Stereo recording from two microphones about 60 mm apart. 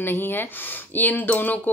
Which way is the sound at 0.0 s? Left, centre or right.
Left.